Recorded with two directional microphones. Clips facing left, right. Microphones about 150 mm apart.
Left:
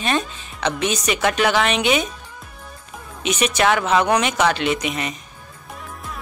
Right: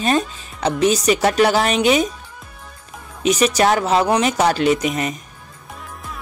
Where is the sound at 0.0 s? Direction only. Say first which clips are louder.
Right 4 dB; 40° right (ahead or behind).